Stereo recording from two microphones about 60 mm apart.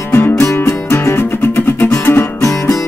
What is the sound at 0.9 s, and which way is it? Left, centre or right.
Music, left.